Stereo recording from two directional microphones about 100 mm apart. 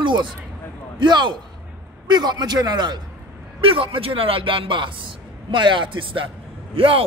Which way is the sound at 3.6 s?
60° right (ahead or behind).